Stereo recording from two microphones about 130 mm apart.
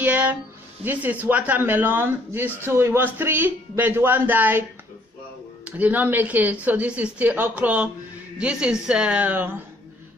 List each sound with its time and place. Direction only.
0.0 s a sound: 10° right (ahead or behind)
0.8 s a woman's voice: 10° right (ahead or behind)
5.7 s a woman's voice: 10° right (ahead or behind)